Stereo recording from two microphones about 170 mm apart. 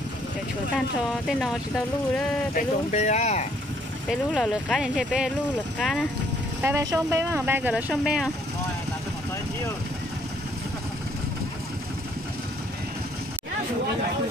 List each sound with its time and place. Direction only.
0.7 s speech: centre (ahead or behind)
2.5 s speech: 45° left (ahead or behind)
4.1 s speech: centre (ahead or behind)
6.6 s speech: 15° right (ahead or behind); by 8.3 s centre (ahead or behind)